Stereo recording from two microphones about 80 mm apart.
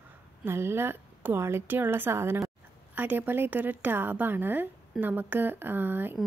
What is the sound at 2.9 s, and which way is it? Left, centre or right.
Speech, right.